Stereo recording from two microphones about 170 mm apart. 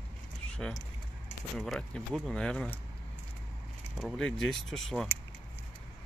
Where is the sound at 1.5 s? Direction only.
Centre (ahead or behind).